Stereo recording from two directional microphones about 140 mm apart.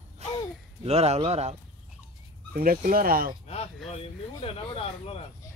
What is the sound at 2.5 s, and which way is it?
Speech, 90° right.